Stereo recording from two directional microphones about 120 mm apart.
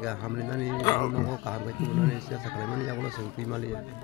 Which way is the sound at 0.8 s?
30° left (ahead or behind).